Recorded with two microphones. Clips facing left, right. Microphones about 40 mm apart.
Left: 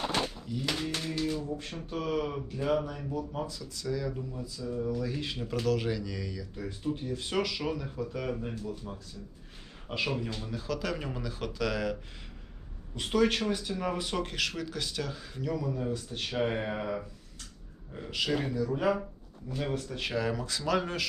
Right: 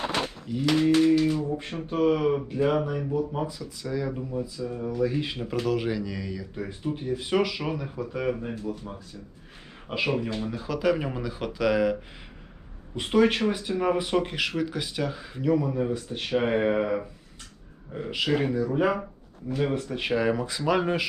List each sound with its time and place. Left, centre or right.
0.5 s speech: right